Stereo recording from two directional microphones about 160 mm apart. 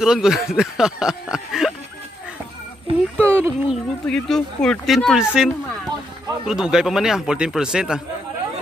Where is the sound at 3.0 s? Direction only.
5° left (ahead or behind).